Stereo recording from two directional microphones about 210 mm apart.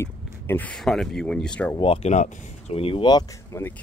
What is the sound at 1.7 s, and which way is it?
Speech, 25° left (ahead or behind).